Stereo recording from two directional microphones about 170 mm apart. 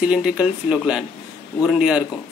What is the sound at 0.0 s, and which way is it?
Speech, 5° right (ahead or behind).